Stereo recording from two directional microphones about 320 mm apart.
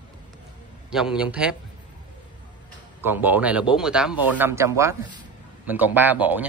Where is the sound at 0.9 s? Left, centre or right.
Centre.